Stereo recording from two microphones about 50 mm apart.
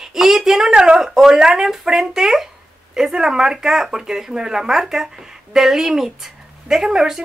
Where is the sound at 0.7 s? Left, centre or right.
Centre.